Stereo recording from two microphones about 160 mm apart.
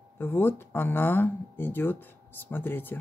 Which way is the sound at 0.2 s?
15° left (ahead or behind).